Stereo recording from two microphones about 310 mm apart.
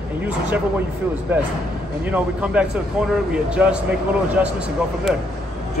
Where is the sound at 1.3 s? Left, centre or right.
Centre.